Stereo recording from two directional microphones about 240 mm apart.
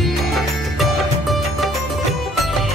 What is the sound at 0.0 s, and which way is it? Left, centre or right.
Music, centre.